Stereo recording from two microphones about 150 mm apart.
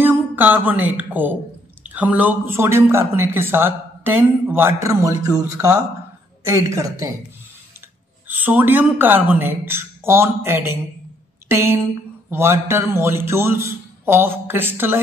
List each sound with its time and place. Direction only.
0.0 s a woman's voice: 10° right (ahead or behind)
8.3 s speech: 10° right (ahead or behind)